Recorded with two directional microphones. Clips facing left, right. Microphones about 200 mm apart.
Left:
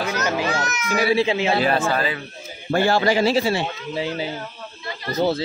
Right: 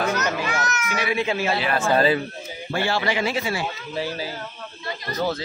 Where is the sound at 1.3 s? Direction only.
20° left (ahead or behind).